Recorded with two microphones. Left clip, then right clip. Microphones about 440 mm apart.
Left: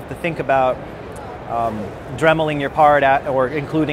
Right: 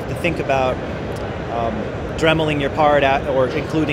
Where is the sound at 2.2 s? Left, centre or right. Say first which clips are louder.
Left 1 dB; left.